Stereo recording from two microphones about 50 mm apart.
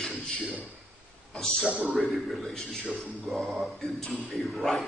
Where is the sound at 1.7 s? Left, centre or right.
Right.